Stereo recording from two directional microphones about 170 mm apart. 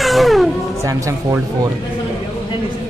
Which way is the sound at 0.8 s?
20° right (ahead or behind).